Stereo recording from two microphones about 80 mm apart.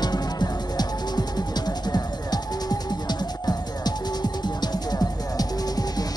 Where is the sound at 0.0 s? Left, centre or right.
Left.